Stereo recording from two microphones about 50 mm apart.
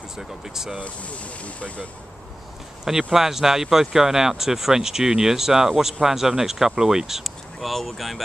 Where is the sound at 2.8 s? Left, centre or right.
Centre.